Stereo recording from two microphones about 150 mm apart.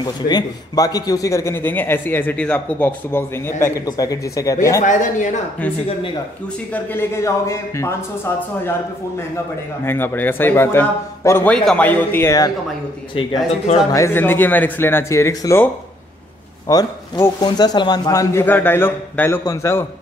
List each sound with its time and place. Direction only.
0.0 s a man's voice: 25° left (ahead or behind)
4.8 s speech: 55° left (ahead or behind)
6.7 s speech: 15° left (ahead or behind)
9.8 s speech: 15° left (ahead or behind)
13.1 s a man's voice: 35° left (ahead or behind)
13.9 s a man's voice: 15° left (ahead or behind)